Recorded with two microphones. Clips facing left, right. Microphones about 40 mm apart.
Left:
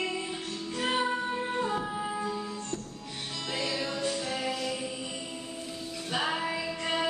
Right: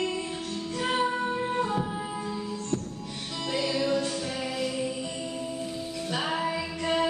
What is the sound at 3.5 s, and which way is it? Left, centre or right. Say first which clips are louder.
Music: right 4 dB; centre.